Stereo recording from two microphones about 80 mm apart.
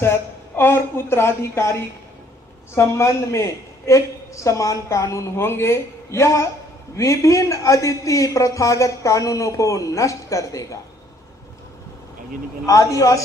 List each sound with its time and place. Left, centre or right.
0.0 s a man's voice: left
12.6 s a man's voice: left